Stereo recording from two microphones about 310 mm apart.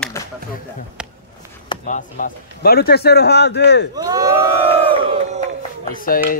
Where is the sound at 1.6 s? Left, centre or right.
Left.